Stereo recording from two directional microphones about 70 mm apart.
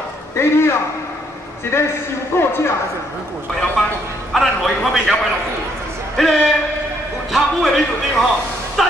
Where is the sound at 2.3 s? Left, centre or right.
Left.